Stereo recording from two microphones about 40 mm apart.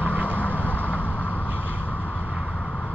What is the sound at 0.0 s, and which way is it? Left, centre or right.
Vehicle, right.